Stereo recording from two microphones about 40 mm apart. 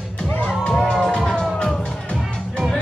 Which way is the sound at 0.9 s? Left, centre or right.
Centre.